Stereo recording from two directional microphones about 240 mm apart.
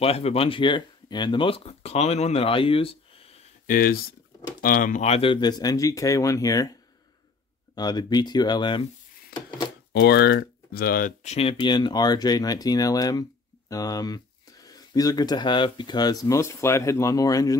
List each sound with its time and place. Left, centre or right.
0.0 s speech: left
3.6 s speech: left; by 6.7 s centre
7.7 s speech: centre
9.9 s speech: left; by 17.6 s centre